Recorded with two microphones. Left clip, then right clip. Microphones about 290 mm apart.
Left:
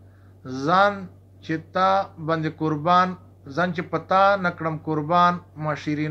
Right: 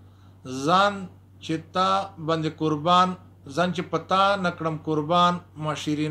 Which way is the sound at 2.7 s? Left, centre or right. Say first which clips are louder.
Left 1 dB; centre.